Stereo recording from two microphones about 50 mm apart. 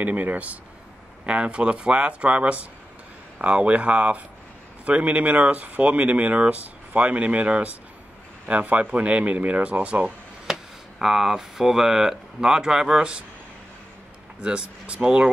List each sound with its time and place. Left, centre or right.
0.0 s speech: right
10.4 s speech: centre
14.4 s speech: centre